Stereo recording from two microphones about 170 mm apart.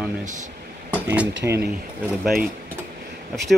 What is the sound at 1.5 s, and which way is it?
Mechanisms, 10° right (ahead or behind).